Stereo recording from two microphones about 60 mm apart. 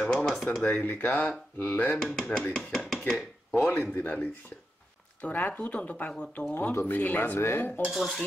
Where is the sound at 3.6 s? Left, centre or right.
Left.